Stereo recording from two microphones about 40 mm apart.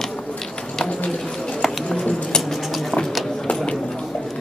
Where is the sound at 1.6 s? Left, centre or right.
Centre.